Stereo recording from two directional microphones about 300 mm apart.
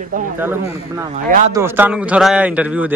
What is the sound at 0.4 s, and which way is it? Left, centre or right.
A man's voice, centre.